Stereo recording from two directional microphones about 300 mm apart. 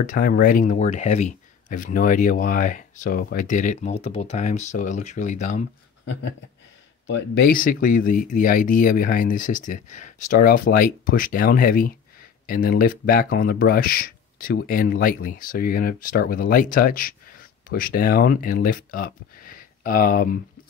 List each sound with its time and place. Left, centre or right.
0.0 s speech: left
7.1 s speech: left